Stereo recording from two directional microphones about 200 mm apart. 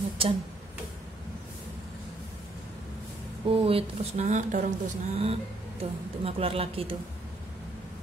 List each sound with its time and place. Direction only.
0.2 s speech: 30° right (ahead or behind)
3.4 s speech: 30° right (ahead or behind)